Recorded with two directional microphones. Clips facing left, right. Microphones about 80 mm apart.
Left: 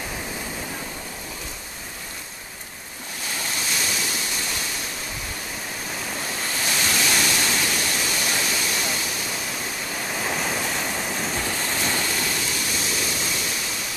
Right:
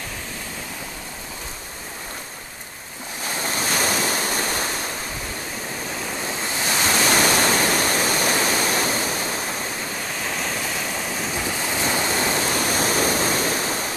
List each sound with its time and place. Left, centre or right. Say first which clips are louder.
3.5 s waves: right 7 dB; right
6.7 s ocean: right 5 dB; right
10.2 s waves: left 1 dB; centre
12.1 s waves: right 5 dB; right